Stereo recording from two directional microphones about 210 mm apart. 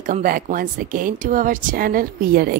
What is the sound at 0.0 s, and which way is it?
A woman's voice, 40° right (ahead or behind).